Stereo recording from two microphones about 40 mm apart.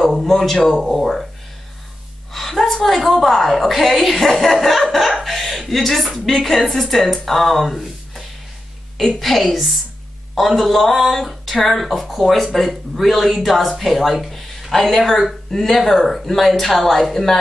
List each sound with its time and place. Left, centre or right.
0.1 s a woman's voice: centre
2.3 s a woman's voice: centre